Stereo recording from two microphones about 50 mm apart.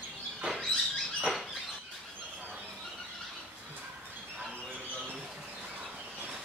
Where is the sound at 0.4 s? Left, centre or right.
Right.